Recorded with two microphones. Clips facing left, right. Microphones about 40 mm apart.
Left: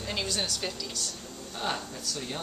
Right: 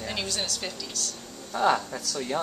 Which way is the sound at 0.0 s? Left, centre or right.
Centre.